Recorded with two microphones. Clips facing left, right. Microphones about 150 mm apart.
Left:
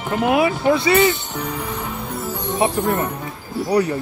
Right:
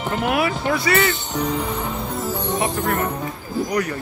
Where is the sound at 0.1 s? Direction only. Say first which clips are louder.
Left 5 dB; 20° left (ahead or behind).